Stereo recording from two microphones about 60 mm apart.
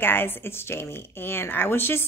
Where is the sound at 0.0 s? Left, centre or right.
Left.